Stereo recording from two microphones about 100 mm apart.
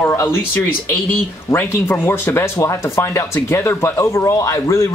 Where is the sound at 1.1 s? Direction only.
20° left (ahead or behind).